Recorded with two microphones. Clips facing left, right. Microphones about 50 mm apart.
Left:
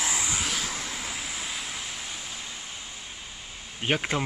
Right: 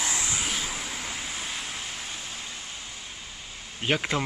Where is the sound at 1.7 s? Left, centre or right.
Right.